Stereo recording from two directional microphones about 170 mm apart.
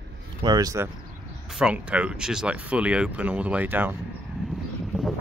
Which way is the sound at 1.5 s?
5° right (ahead or behind).